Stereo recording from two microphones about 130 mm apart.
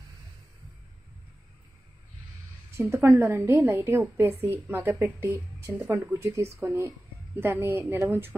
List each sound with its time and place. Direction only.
2.7 s a woman's voice: 20° right (ahead or behind)